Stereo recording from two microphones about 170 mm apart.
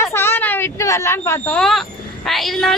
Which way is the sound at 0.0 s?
15° left (ahead or behind).